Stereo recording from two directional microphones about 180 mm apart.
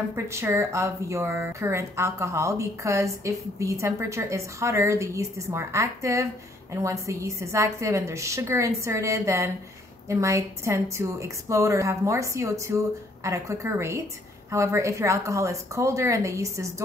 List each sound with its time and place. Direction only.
0.1 s speech: 15° right (ahead or behind)